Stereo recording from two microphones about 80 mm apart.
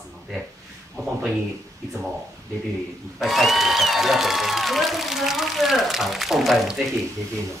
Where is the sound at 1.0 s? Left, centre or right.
Right.